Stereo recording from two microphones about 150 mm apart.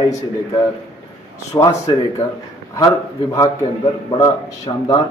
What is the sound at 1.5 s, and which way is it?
Speech, 20° left (ahead or behind).